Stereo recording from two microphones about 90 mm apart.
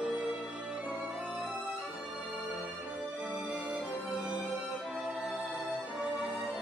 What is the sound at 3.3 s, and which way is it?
Music, 15° right (ahead or behind).